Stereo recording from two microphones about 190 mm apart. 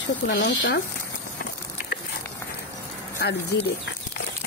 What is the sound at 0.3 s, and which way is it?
Speech, 50° left (ahead or behind).